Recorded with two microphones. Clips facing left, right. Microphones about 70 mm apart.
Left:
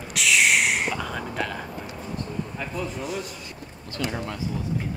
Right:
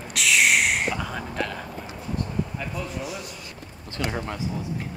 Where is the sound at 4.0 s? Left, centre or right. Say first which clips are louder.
Even; right.